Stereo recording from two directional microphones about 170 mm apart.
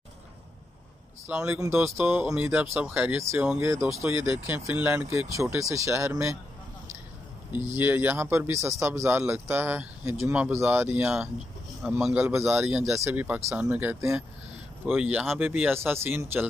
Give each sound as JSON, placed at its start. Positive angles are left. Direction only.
{"t": 1.3, "sound": "speech", "side_deg": -5}
{"t": 7.7, "sound": "speech", "side_deg": -10}